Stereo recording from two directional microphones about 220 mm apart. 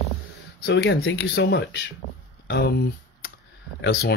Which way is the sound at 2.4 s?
50° left (ahead or behind).